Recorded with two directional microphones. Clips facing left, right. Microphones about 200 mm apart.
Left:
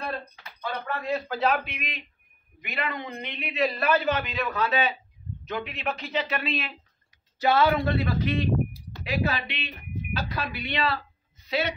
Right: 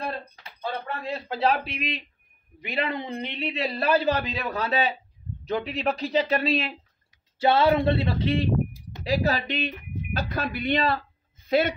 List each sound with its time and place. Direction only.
0.4 s a man's voice: 30° right (ahead or behind)
9.0 s a man's voice: 40° right (ahead or behind)